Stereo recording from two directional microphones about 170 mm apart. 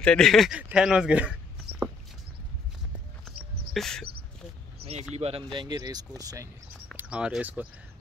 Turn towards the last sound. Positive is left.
turn(degrees=-5)  # may be behind; listen again after turning